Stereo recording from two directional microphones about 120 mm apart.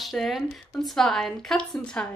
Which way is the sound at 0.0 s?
Centre (ahead or behind).